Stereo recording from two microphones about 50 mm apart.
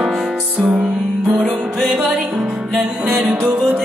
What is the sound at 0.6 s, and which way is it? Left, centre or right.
Music, right.